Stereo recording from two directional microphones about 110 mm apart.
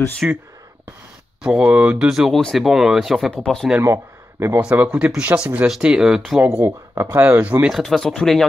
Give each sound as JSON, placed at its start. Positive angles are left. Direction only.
{"t": 0.2, "sound": "speech", "side_deg": -10}
{"t": 1.4, "sound": "speech", "side_deg": -10}
{"t": 2.0, "sound": "speech", "side_deg": -5}
{"t": 3.8, "sound": "speech", "side_deg": -25}
{"t": 4.6, "sound": "speech", "side_deg": -15}
{"t": 6.6, "sound": "speech", "side_deg": -25}
{"t": 7.7, "sound": "speech", "side_deg": 0}